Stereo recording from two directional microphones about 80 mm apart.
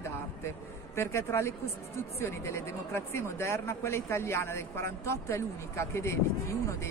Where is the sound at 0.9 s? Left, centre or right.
Left.